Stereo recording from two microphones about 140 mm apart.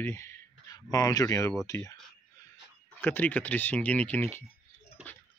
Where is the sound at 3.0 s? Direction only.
15° left (ahead or behind).